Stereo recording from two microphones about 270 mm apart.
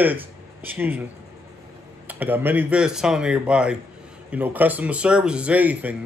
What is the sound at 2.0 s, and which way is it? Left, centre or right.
Speech, centre.